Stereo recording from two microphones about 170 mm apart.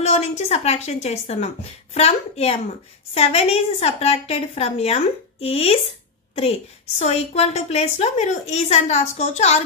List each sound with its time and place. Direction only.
0.0 s a woman's voice: 40° left (ahead or behind)
7.0 s a woman's voice: 40° left (ahead or behind)